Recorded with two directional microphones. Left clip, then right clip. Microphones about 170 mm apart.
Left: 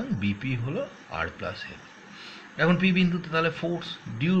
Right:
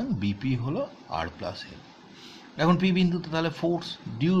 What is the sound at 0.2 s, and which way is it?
A man's voice, 20° right (ahead or behind).